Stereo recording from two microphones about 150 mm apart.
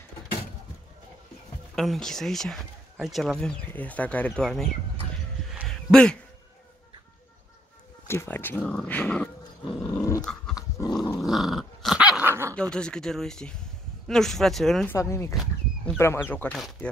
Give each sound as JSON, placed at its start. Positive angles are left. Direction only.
{"t": 1.8, "sound": "speech", "side_deg": 5}
{"t": 5.5, "sound": "a sound", "side_deg": 0}
{"t": 8.1, "sound": "speech", "side_deg": 15}
{"t": 10.5, "sound": "dog", "side_deg": 25}
{"t": 11.1, "sound": "dog", "side_deg": 0}
{"t": 12.5, "sound": "speech", "side_deg": 5}
{"t": 14.9, "sound": "speech", "side_deg": 20}